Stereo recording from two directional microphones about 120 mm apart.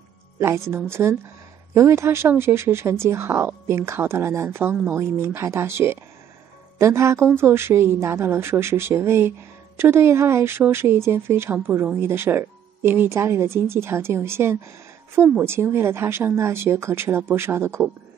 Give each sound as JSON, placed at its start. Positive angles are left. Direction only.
{"t": 0.4, "sound": "speech", "side_deg": -20}